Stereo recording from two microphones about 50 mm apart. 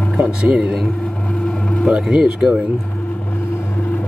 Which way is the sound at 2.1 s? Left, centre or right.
Centre.